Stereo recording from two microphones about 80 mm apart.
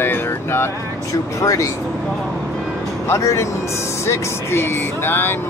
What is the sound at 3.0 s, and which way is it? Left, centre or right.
Speech, left.